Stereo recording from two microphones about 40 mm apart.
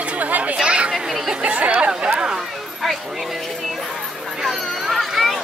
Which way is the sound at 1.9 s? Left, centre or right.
Right.